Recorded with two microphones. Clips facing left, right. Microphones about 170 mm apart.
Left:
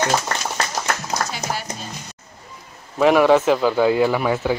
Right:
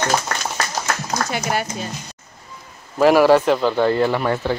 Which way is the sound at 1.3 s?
60° right (ahead or behind).